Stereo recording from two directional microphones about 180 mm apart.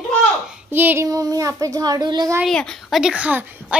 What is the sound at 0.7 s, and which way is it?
A child's voice, 10° right (ahead or behind).